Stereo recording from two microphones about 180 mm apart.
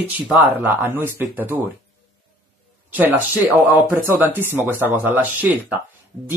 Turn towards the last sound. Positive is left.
turn(degrees=-10)  # may be behind; listen again after turning